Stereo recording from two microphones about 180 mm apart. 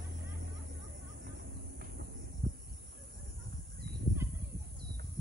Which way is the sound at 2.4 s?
60° right (ahead or behind).